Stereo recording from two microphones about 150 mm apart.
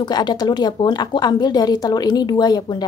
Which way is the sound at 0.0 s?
30° left (ahead or behind).